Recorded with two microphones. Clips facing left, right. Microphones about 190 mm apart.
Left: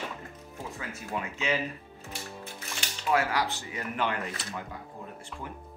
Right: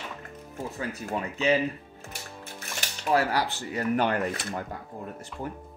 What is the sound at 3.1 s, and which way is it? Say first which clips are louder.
Speech: right 2 dB; 35° right (ahead or behind).